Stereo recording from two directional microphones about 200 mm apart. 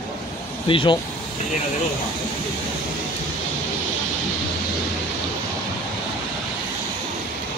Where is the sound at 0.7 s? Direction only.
25° left (ahead or behind).